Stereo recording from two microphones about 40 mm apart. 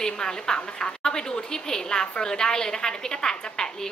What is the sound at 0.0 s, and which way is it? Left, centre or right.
A woman's voice, centre.